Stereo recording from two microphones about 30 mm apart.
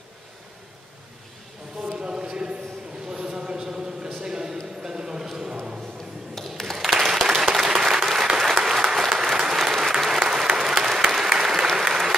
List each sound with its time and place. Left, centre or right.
1.9 s a sound: right
6.6 s applause: centre
6.9 s applause: centre